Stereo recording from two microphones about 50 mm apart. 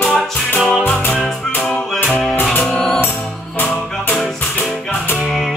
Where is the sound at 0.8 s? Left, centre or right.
Left.